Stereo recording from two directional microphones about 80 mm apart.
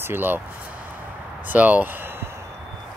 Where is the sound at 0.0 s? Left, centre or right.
Right.